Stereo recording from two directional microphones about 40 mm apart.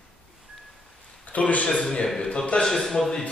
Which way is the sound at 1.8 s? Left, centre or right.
Centre.